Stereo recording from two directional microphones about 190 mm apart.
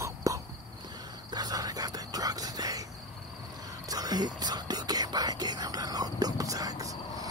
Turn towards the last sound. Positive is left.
turn(degrees=-20)  # may be behind; listen again after turning